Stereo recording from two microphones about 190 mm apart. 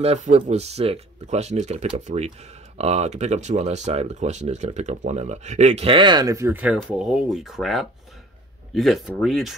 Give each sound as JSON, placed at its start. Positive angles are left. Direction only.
{"t": 0.0, "sound": "speech", "side_deg": -35}